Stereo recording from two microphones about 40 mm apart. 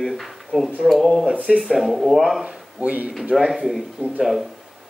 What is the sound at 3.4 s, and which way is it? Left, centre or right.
Speech, centre.